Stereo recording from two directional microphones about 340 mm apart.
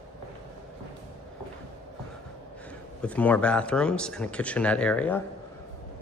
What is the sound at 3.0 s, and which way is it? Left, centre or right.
Speech, centre.